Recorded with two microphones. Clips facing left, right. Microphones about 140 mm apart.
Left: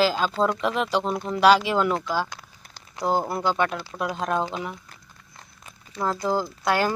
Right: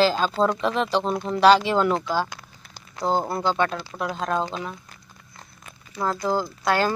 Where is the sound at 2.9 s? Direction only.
10° left (ahead or behind).